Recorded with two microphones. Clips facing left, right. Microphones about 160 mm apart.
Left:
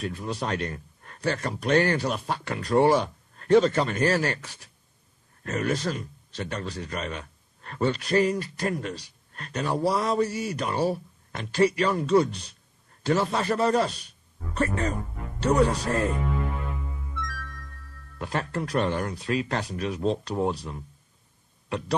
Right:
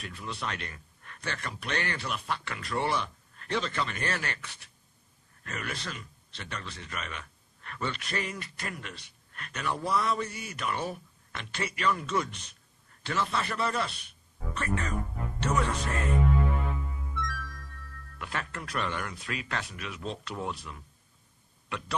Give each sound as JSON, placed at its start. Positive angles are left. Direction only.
{"t": 0.0, "sound": "a man's voice", "side_deg": 40}
{"t": 17.2, "sound": "music", "side_deg": 0}
{"t": 18.2, "sound": "a man's voice", "side_deg": 35}